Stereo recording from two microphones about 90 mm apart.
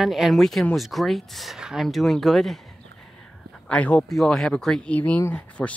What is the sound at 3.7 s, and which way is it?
Speech, 15° left (ahead or behind).